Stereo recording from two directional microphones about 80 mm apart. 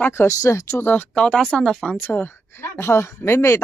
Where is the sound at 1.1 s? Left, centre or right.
Centre.